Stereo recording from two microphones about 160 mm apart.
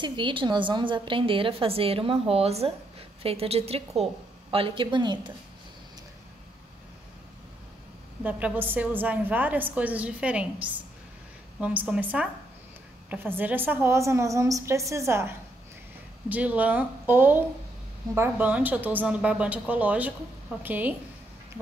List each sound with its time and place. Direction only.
0.0 s a woman's voice: 30° right (ahead or behind)
8.2 s a woman's voice: 10° right (ahead or behind)